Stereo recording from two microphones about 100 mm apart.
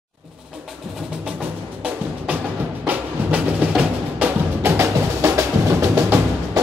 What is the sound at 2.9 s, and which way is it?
Music, 15° right (ahead or behind).